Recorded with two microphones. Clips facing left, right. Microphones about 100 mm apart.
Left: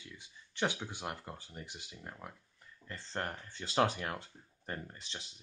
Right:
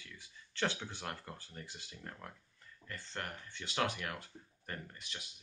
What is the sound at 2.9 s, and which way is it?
Speech, 30° left (ahead or behind).